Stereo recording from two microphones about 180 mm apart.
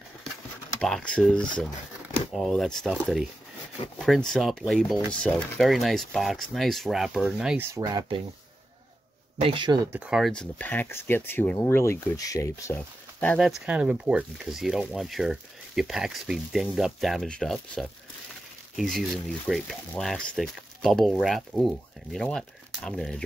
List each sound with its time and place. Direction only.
0.7 s speech: 5° left (ahead or behind); by 8.2 s 20° right (ahead or behind)
9.4 s speech: 25° right (ahead or behind)
9.9 s speech: 5° right (ahead or behind)
13.4 s speech: 5° right (ahead or behind)